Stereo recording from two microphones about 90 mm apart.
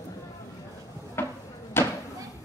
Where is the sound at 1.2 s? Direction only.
25° left (ahead or behind).